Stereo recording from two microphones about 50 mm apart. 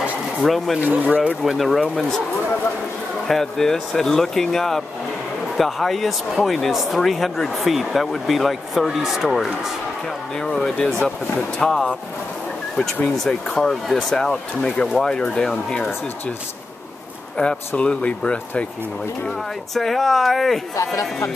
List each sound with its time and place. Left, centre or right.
0.4 s speech: centre
0.7 s speech: right
1.4 s speech: centre
3.3 s speech: centre
10.4 s speech: centre
13.1 s speech: centre
17.4 s speech: centre
19.7 s speech: centre